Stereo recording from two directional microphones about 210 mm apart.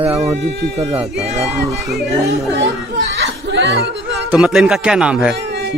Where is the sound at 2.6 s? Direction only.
55° right (ahead or behind).